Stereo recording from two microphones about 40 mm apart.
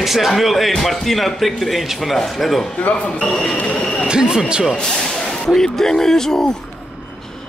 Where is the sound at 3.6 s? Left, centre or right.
Centre.